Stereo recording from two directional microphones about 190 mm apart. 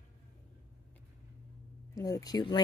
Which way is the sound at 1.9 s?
20° left (ahead or behind).